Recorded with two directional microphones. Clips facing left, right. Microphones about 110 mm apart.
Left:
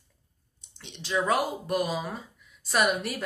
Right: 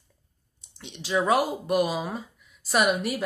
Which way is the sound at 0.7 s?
10° right (ahead or behind).